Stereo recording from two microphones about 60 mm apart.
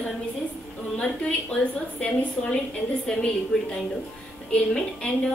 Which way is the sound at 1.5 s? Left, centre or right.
Centre.